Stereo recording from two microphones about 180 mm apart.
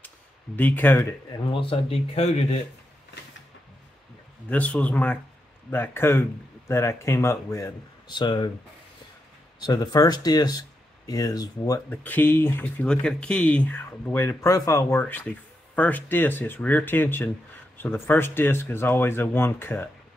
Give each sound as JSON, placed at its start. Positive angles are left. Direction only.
{"t": 0.6, "sound": "speech", "side_deg": 10}
{"t": 1.5, "sound": "speech", "side_deg": 30}
{"t": 4.5, "sound": "speech", "side_deg": 10}
{"t": 9.6, "sound": "speech", "side_deg": 20}